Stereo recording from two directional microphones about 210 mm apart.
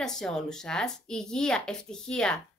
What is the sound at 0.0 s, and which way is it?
Speech, 5° left (ahead or behind).